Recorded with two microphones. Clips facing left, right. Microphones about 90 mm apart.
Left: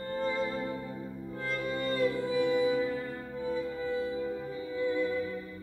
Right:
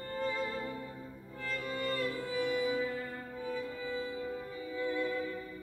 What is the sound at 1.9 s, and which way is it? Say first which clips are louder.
Music: left 10 dB; 25° left (ahead or behind).